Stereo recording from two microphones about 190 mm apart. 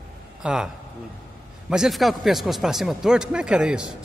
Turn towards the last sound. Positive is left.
turn(degrees=-5)  # may be behind; listen again after turning